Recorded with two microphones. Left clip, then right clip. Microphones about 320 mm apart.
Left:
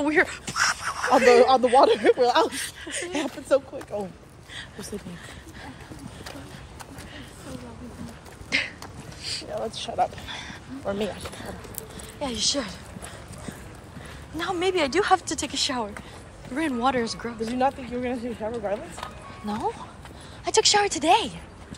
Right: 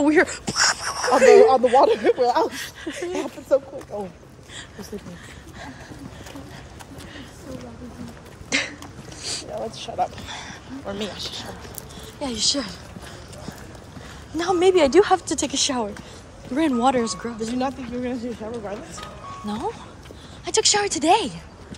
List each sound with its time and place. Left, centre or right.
0.0 s speech: centre
1.4 s speech: left
8.5 s a sound: centre
9.7 s speech: left
10.2 s a woman's voice: centre
10.9 s speech: left
12.2 s a woman's voice: centre
14.3 s a woman's voice: centre
17.6 s speech: left
19.4 s a woman's voice: centre